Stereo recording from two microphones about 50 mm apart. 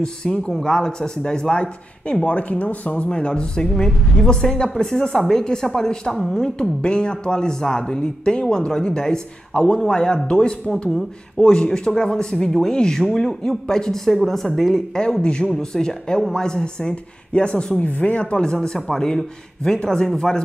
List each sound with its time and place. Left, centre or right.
0.0 s a woman's voice: centre
6.8 s a man's voice: centre